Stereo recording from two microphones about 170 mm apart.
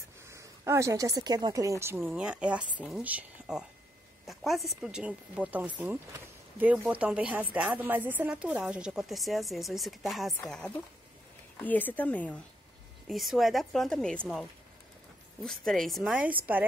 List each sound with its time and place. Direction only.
0.3 s a woman's voice: 15° right (ahead or behind)